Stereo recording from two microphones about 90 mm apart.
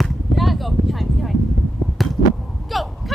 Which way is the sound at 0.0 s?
Centre (ahead or behind).